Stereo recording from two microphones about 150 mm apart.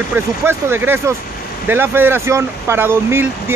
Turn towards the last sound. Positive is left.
turn(degrees=-15)  # may be behind; listen again after turning